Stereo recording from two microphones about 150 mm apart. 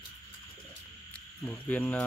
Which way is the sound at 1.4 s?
10° left (ahead or behind).